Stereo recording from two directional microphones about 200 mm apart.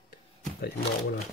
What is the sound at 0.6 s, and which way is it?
Speech, 50° left (ahead or behind).